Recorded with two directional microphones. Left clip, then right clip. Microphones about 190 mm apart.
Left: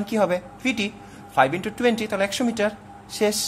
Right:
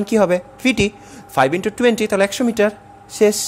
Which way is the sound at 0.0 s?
30° right (ahead or behind).